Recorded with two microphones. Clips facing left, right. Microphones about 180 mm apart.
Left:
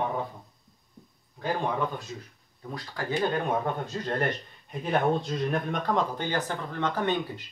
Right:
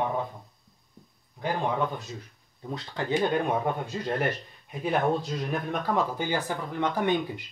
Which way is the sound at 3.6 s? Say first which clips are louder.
Right 1 dB; 10° right (ahead or behind).